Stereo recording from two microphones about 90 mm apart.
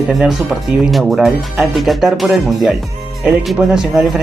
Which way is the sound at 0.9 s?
Centre (ahead or behind).